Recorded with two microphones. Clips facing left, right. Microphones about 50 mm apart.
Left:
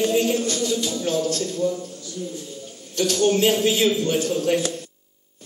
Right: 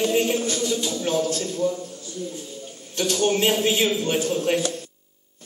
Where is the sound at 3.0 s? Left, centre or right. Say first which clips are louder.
Left 2 dB; centre.